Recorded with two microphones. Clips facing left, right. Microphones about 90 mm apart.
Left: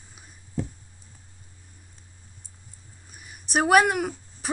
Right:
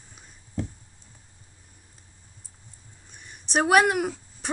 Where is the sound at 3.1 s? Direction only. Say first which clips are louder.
Even; 5° left (ahead or behind).